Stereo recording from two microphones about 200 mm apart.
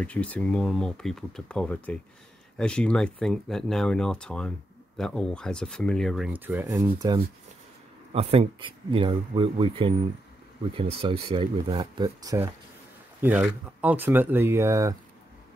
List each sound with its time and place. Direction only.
0.0 s speech: 5° left (ahead or behind); by 7.2 s 20° right (ahead or behind)
8.1 s speech: 30° right (ahead or behind); by 15.0 s 15° right (ahead or behind)